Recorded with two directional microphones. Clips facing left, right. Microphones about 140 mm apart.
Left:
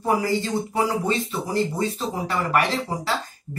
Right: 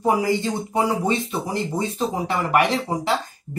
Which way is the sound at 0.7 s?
20° right (ahead or behind).